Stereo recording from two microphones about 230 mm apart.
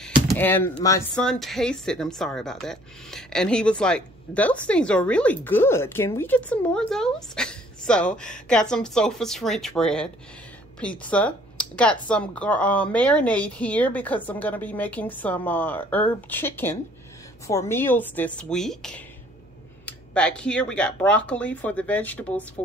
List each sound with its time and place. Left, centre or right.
0.0 s speech: centre